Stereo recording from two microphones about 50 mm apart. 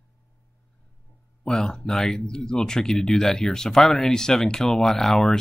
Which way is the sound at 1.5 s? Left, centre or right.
Centre.